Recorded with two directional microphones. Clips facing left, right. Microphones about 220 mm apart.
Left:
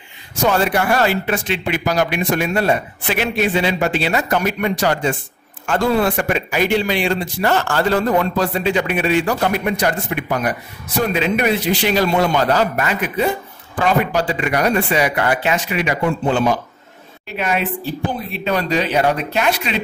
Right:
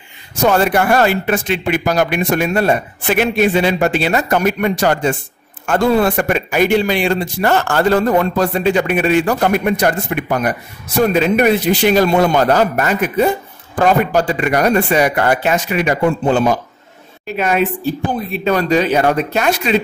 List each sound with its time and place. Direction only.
0.5 s a man's voice: 50° right (ahead or behind)